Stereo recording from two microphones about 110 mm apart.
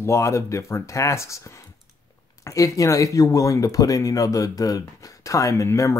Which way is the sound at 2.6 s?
30° left (ahead or behind).